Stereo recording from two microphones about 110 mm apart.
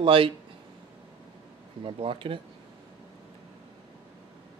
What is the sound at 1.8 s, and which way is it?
Speech, 55° right (ahead or behind).